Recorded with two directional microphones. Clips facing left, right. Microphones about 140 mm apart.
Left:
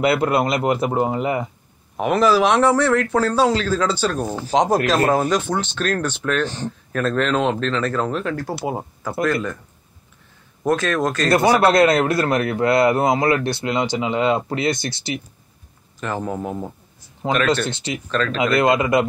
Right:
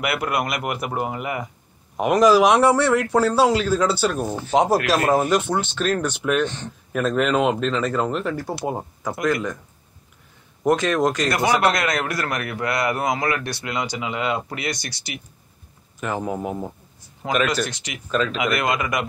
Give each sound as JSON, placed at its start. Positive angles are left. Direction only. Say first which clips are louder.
{"t": 0.0, "sound": "a man's voice", "louder": "left 6 dB", "side_deg": 25}
{"t": 2.0, "sound": "speech", "louder": "right 1 dB", "side_deg": -10}
{"t": 6.4, "sound": "speech", "louder": "left 1 dB", "side_deg": 35}
{"t": 6.9, "sound": "speech", "louder": "even", "side_deg": -10}
{"t": 9.2, "sound": "speech", "louder": "left 2 dB", "side_deg": -15}
{"t": 10.6, "sound": "speech", "louder": "right 1 dB", "side_deg": -20}
{"t": 11.2, "sound": "a man's voice", "louder": "left 4 dB", "side_deg": 30}
{"t": 16.0, "sound": "speech", "louder": "even", "side_deg": -10}
{"t": 17.2, "sound": "a man's voice", "louder": "left 3 dB", "side_deg": 25}
{"t": 18.1, "sound": "speech", "louder": "even", "side_deg": -5}
{"t": 18.4, "sound": "a man's voice", "louder": "left 5 dB", "side_deg": 30}